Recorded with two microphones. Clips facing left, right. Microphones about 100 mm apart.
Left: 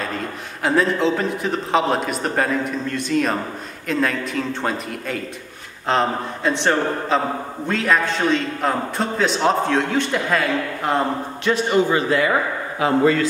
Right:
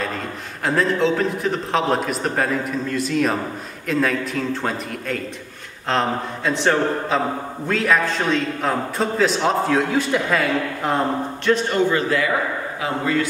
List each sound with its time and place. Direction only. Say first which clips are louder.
0.7 s a man's voice: left 1 dB; centre (ahead or behind)
11.9 s a man's voice: left 2 dB; 25° left (ahead or behind)
12.8 s a man's voice: left 6 dB; 35° left (ahead or behind)